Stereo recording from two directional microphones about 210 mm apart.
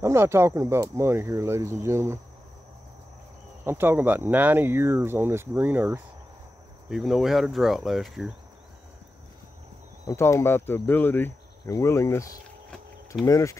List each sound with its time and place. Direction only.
0.0 s speech: 10° right (ahead or behind)
3.6 s speech: 10° right (ahead or behind)
10.0 s speech: 10° left (ahead or behind)